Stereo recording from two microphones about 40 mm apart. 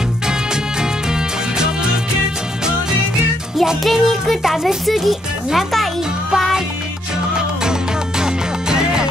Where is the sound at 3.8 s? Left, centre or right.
Centre.